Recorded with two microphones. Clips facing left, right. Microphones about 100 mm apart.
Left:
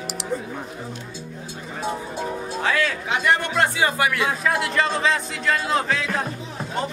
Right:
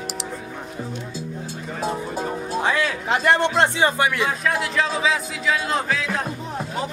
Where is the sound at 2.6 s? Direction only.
15° right (ahead or behind).